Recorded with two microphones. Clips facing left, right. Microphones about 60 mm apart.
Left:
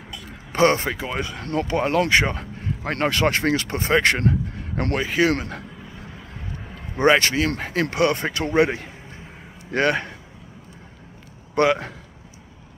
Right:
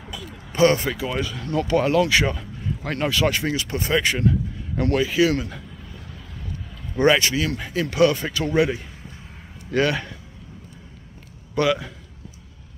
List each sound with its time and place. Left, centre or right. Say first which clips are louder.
0.5 s speech: even; left
1.7 s speech: right 1 dB; left
4.0 s speech: left 2 dB; left
4.6 s a sound: right 2 dB; left
4.9 s speech: right 1 dB; left
6.7 s vehicle: left 1 dB; left
7.2 s speech: left 2 dB; left
11.5 s speech: left 2 dB; left